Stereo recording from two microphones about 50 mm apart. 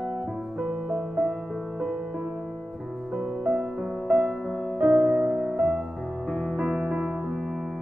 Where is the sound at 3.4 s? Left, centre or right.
Centre.